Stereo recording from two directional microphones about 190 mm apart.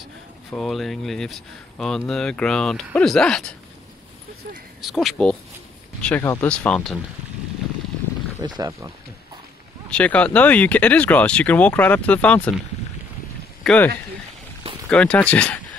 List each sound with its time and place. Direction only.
0.5 s speech: centre (ahead or behind)
4.8 s speech: centre (ahead or behind)
8.4 s speech: 20° right (ahead or behind)
9.8 s speech: 5° left (ahead or behind)
13.7 s speech: 10° left (ahead or behind)